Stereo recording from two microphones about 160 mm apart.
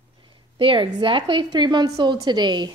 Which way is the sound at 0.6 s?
30° right (ahead or behind).